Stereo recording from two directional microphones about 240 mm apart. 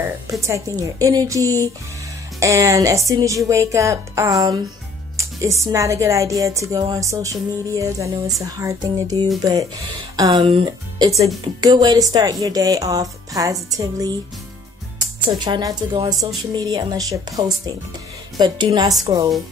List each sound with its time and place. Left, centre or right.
0.4 s speech: centre
15.2 s speech: centre